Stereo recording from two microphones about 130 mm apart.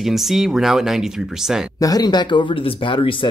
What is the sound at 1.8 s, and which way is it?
Speech, 30° left (ahead or behind).